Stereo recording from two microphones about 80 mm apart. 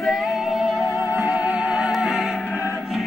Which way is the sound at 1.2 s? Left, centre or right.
Centre.